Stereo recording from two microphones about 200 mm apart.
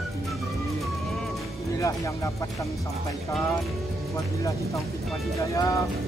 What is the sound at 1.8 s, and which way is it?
Speech, 15° left (ahead or behind).